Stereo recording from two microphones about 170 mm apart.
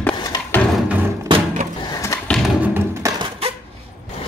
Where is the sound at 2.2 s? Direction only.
5° left (ahead or behind).